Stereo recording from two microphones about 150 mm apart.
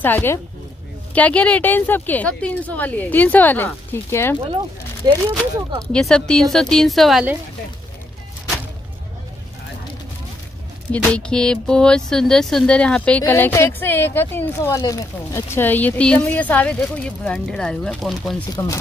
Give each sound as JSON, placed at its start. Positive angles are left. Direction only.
{"t": 0.0, "sound": "speech", "side_deg": 15}
{"t": 5.0, "sound": "speech", "side_deg": -25}
{"t": 5.9, "sound": "speech", "side_deg": 5}
{"t": 10.9, "sound": "speech", "side_deg": 5}
{"t": 13.2, "sound": "speech", "side_deg": 20}